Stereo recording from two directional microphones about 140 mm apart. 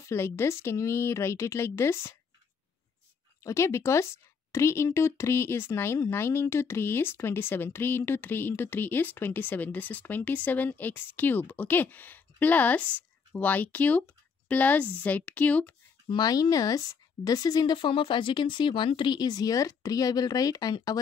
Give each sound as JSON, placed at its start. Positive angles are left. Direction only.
{"t": 0.0, "sound": "speech", "side_deg": 20}
{"t": 3.4, "sound": "speech", "side_deg": 20}
{"t": 16.1, "sound": "speech", "side_deg": 25}